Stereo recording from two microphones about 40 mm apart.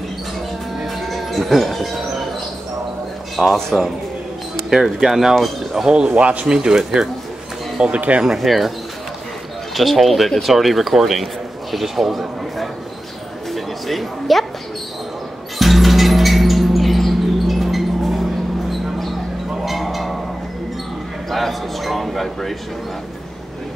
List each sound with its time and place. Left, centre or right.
0.7 s music: centre
3.5 s speech: centre
5.0 s speech: centre
5.9 s speech: right
6.1 s speech: right
6.4 s speech: centre
7.8 s speech: right
8.3 s speech: centre
9.8 s a man's voice: centre
13.5 s a sound: centre
15.6 s music: centre
19.6 s livestock: centre
21.3 s a sound: centre